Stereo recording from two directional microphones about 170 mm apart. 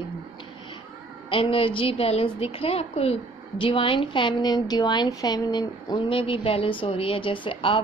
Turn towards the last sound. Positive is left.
turn(degrees=30)  # may be behind; listen again after turning